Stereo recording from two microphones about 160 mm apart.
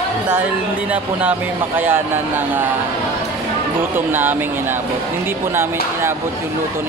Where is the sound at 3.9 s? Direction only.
10° right (ahead or behind).